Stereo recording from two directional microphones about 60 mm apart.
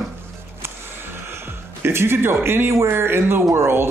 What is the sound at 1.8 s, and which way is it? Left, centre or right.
A man's voice, right.